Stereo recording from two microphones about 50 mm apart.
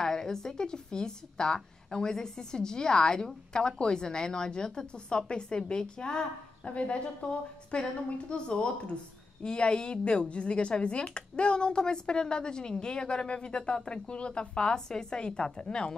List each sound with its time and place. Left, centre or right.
0.0 s a woman's voice: centre